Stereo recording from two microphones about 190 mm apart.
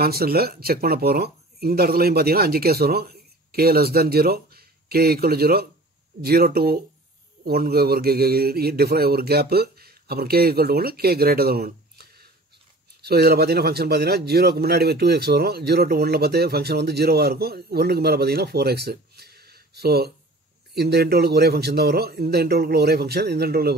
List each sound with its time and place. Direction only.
0.0 s a man's voice: 55° right (ahead or behind)